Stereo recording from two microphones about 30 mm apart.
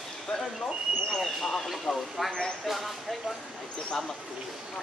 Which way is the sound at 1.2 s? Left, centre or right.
Centre.